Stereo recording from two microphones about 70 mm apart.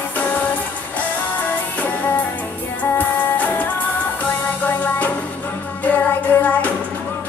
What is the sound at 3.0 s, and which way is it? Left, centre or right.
Music, left.